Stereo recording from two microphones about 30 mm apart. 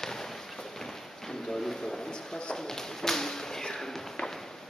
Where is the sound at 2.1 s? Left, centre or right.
Left.